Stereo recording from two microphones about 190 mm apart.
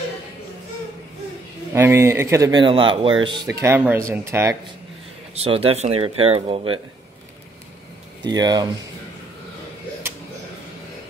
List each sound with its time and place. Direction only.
1.7 s a man's voice: 15° right (ahead or behind)
3.6 s a man's voice: 10° right (ahead or behind)
5.3 s speech: 30° right (ahead or behind)
8.2 s speech: 20° right (ahead or behind)
10.0 s a sound: 10° right (ahead or behind)